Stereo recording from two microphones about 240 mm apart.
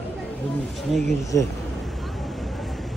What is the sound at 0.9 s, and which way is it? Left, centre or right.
Speech, centre.